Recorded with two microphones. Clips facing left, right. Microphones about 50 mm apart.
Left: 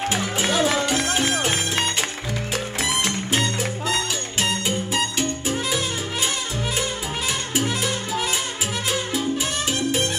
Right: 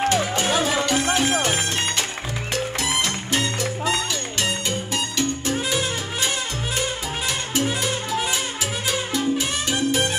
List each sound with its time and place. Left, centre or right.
0.5 s music: centre
3.0 s music: centre
9.7 s music: centre